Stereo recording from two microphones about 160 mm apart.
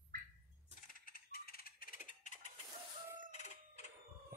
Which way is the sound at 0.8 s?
60° left (ahead or behind).